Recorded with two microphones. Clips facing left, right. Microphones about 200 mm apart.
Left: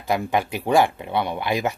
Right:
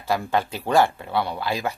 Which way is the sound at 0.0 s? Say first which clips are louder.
Left 1 dB; 15° left (ahead or behind).